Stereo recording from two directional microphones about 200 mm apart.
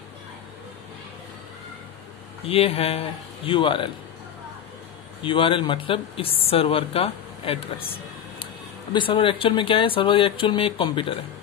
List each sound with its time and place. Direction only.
2.4 s speech: 30° left (ahead or behind)
5.2 s speech: 25° left (ahead or behind)
8.9 s speech: 25° left (ahead or behind)